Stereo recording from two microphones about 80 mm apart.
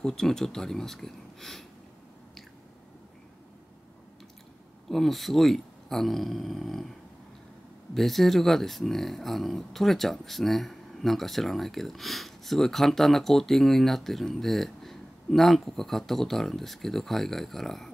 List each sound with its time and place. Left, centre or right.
0.0 s speech: centre
4.8 s speech: centre
7.9 s speech: centre